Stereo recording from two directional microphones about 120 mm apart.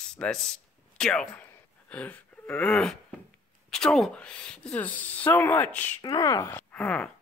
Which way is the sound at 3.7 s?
5° left (ahead or behind).